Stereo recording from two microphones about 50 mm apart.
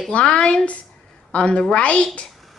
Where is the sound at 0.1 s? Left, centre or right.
Centre.